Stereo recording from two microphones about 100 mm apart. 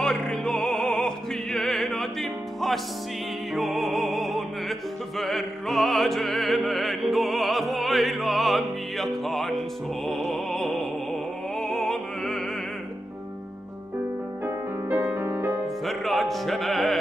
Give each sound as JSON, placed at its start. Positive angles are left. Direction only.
{"t": 0.0, "sound": "music", "side_deg": 5}
{"t": 10.0, "sound": "opera", "side_deg": 0}
{"t": 14.4, "sound": "music", "side_deg": -20}
{"t": 15.8, "sound": "music", "side_deg": 0}